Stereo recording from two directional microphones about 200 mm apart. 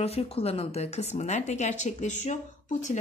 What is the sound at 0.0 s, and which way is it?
Speech, 30° left (ahead or behind).